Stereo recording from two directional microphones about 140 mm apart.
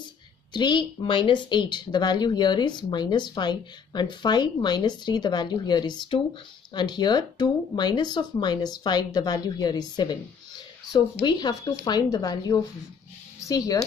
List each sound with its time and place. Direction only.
0.5 s speech: 30° left (ahead or behind)